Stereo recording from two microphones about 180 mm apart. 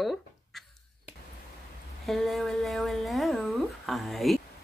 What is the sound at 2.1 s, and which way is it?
Speech, centre (ahead or behind).